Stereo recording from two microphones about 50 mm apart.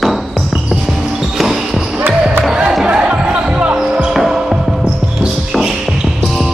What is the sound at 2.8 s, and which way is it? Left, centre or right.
Basketball bounce, centre.